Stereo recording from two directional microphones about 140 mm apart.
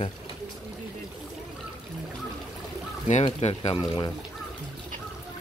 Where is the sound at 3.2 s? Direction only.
45° left (ahead or behind).